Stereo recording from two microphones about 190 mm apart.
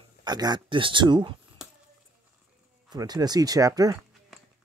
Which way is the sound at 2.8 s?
20° right (ahead or behind).